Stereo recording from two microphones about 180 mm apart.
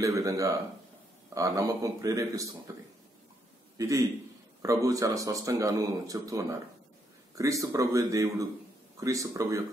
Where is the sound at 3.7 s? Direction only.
20° right (ahead or behind).